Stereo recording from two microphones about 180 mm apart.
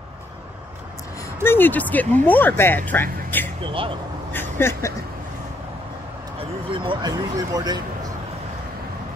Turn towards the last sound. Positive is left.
turn(degrees=-20)  # may be behind; listen again after turning